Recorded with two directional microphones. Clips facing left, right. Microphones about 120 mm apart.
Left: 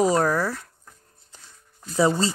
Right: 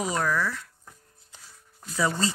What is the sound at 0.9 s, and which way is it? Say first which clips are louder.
Music: even; 5° right (ahead or behind).